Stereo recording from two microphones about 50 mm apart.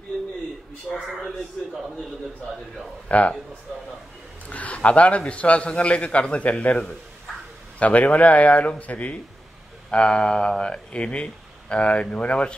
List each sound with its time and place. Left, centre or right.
1.1 s speech: centre
3.1 s a man's voice: left
4.5 s a man's voice: left